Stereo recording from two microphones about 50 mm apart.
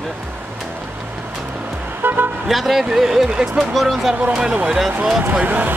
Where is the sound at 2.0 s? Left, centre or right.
Right.